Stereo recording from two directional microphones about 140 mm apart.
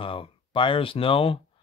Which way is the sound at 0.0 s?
40° left (ahead or behind).